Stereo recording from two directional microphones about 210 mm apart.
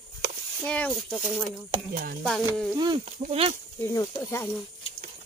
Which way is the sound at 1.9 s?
45° right (ahead or behind).